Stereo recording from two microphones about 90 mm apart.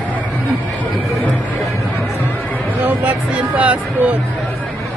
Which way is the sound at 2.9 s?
15° right (ahead or behind).